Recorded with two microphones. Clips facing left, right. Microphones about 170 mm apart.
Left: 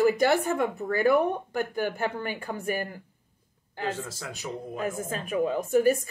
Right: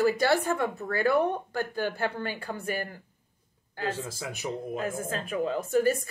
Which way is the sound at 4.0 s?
15° right (ahead or behind).